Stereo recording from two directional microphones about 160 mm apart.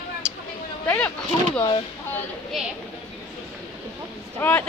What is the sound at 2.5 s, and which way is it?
Speech, centre (ahead or behind).